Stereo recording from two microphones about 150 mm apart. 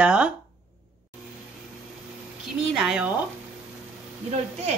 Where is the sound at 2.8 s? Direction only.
5° right (ahead or behind).